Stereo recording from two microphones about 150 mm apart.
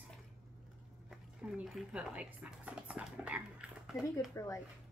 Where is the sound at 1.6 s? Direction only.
5° right (ahead or behind).